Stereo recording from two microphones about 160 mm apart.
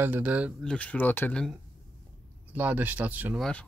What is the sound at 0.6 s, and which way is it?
Speech, 10° left (ahead or behind).